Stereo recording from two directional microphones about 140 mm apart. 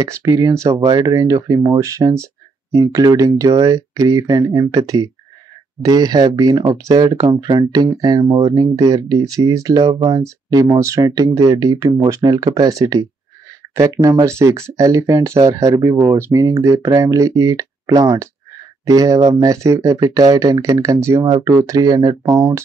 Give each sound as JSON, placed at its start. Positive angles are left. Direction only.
{"t": 0.0, "sound": "speech", "side_deg": -25}